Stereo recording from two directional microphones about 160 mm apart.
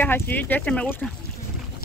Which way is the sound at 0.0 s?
10° left (ahead or behind).